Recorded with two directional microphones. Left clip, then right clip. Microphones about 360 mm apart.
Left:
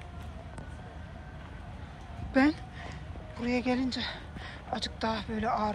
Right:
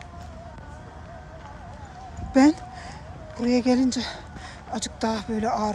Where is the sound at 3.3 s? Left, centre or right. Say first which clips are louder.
Right 8 dB; centre.